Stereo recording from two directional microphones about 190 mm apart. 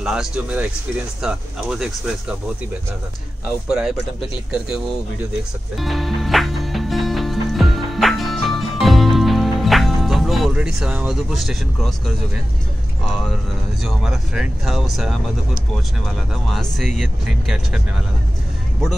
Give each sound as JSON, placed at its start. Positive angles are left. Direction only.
{"t": 0.0, "sound": "speech", "side_deg": -5}
{"t": 5.8, "sound": "music", "side_deg": 0}
{"t": 13.1, "sound": "speech", "side_deg": 0}
{"t": 16.7, "sound": "speech", "side_deg": 0}